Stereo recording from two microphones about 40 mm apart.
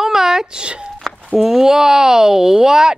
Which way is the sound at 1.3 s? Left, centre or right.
Centre.